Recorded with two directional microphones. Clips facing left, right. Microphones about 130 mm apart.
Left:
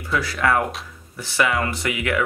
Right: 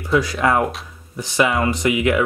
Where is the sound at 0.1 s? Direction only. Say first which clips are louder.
Right 4 dB; 20° right (ahead or behind).